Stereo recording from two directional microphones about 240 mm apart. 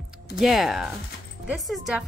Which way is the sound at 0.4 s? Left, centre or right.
Centre.